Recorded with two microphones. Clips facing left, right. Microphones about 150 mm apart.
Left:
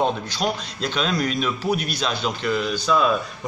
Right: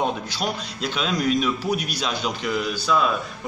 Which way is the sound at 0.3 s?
10° right (ahead or behind).